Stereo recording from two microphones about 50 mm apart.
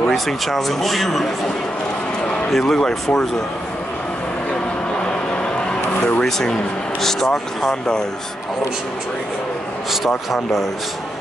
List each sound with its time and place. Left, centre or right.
0.1 s speech: centre
2.5 s speech: centre
5.3 s vehicle: centre
6.2 s speech: centre
10.0 s speech: centre